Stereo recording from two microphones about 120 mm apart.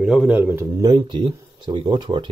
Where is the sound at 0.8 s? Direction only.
35° right (ahead or behind).